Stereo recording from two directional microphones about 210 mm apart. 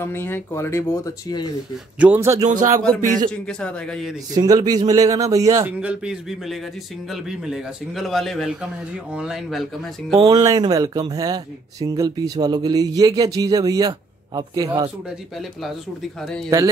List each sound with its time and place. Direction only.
0.0 s speech: 10° left (ahead or behind)
2.0 s speech: 10° right (ahead or behind)
2.5 s music: 35° right (ahead or behind)
3.3 s a man's voice: 5° left (ahead or behind)
4.4 s speech: 20° right (ahead or behind)
5.8 s a man's voice: 5° right (ahead or behind)
10.1 s speech: 25° right (ahead or behind)
15.3 s a man's voice: centre (ahead or behind)